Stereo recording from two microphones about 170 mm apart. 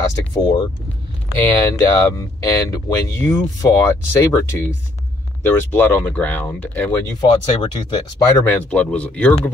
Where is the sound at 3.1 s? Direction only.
15° left (ahead or behind).